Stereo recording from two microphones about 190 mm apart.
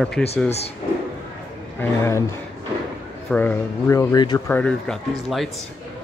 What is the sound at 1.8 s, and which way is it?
Speech, 15° left (ahead or behind).